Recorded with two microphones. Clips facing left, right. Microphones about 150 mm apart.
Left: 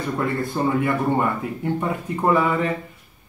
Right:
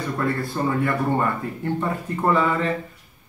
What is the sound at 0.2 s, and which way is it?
Speech, 20° left (ahead or behind).